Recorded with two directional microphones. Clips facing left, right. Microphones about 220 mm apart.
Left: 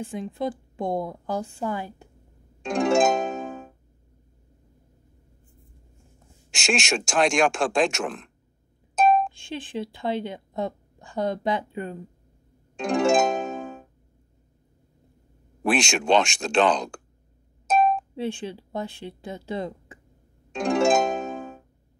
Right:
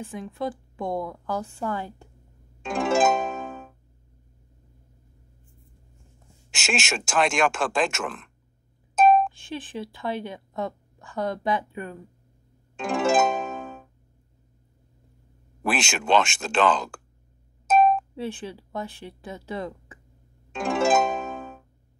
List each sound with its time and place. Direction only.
0.0 s a woman's voice: 25° left (ahead or behind)
2.6 s music: 5° right (ahead or behind)
6.5 s speech: 5° right (ahead or behind)
9.6 s a woman's voice: 25° left (ahead or behind)
12.7 s music: 5° right (ahead or behind)
15.6 s speech: 5° right (ahead or behind)
18.1 s speech: 25° left (ahead or behind)
20.5 s harp: 5° right (ahead or behind)